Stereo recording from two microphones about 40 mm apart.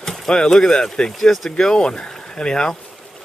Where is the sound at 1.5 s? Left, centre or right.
Centre.